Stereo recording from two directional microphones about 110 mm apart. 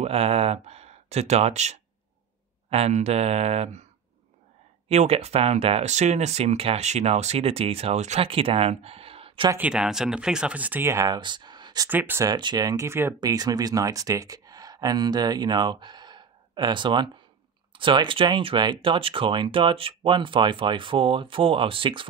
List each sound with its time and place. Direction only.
0.0 s speech: 65° right (ahead or behind)
0.7 s speech: 75° right (ahead or behind)
2.7 s speech: 75° right (ahead or behind)
4.8 s speech: 75° right (ahead or behind); by 9.5 s 55° right (ahead or behind)
9.6 s speech: 10° right (ahead or behind)
11.1 s speech: 45° right (ahead or behind)
11.9 s speech: 20° right (ahead or behind)
12.3 s speech: 40° right (ahead or behind); by 13.1 s 25° right (ahead or behind)
13.2 s speech: 35° right (ahead or behind); by 22.0 s 50° right (ahead or behind)